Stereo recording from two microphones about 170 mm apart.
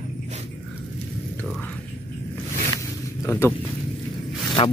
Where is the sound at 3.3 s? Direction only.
20° left (ahead or behind).